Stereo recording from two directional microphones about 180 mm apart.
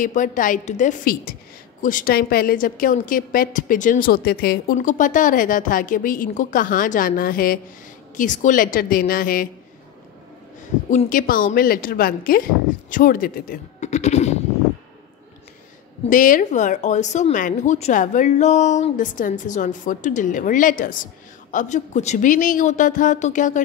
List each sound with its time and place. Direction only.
0.0 s speech: 45° left (ahead or behind)
4.7 s speech: 45° left (ahead or behind)
10.9 s speech: 45° left (ahead or behind)
16.1 s speech: 50° left (ahead or behind)